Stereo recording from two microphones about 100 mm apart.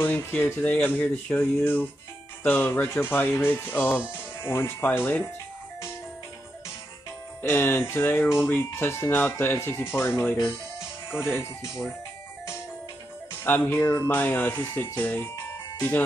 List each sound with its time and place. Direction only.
0.0 s speech: 20° left (ahead or behind)
7.4 s speech: 20° left (ahead or behind)
13.4 s speech: 20° left (ahead or behind)